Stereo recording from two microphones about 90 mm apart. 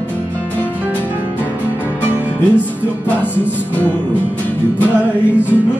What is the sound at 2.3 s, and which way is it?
Music, 20° left (ahead or behind).